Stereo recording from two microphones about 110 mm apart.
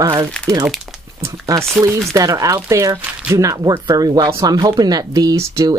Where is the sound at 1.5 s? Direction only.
35° right (ahead or behind).